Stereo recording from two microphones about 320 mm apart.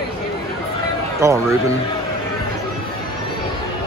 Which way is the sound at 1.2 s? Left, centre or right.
Centre.